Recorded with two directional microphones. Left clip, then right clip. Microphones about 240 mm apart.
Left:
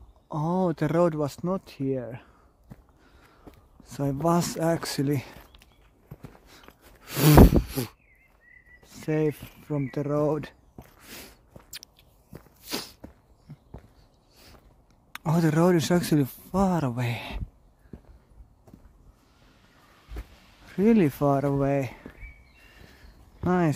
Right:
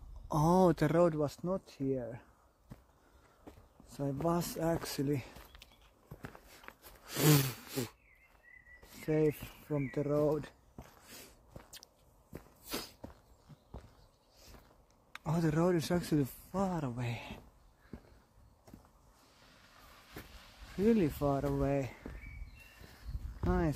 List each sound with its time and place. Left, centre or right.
0.3 s speech: centre
0.8 s speech: centre
2.7 s walk: centre
3.8 s speech: left
6.7 s a sound: centre
7.1 s speech: left
8.9 s speech: left
12.6 s a sound: left
15.1 s speech: left
20.2 s a sound: centre
20.7 s speech: left
23.4 s speech: left